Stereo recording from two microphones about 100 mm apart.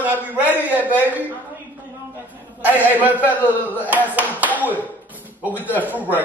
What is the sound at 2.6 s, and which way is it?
Speech, 15° right (ahead or behind).